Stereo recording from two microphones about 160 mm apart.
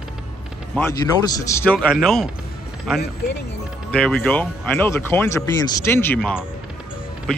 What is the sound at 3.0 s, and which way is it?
Speech, 90° left.